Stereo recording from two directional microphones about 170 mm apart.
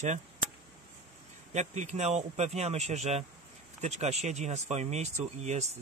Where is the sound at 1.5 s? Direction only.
45° right (ahead or behind).